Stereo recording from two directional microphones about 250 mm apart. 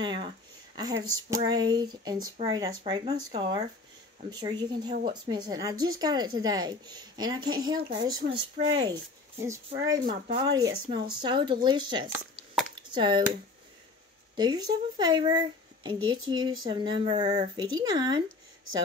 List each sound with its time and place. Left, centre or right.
0.0 s speech: centre
8.2 s speech: right
8.7 s speech: centre